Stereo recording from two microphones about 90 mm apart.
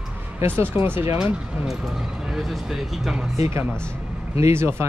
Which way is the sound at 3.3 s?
30° right (ahead or behind).